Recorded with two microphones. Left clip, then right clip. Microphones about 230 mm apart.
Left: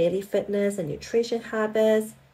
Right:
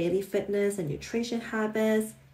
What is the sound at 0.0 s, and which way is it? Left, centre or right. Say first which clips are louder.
Speech: left 4 dB; centre.